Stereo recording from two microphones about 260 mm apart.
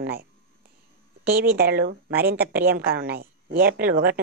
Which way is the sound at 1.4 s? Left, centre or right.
Right.